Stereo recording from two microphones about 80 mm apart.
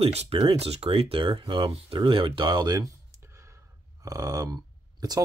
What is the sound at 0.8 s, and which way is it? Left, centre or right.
Speech, right.